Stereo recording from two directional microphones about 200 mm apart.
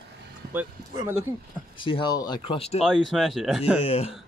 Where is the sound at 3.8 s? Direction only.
30° left (ahead or behind).